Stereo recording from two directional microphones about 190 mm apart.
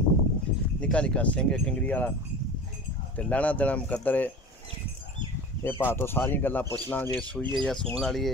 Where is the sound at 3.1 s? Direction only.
5° left (ahead or behind).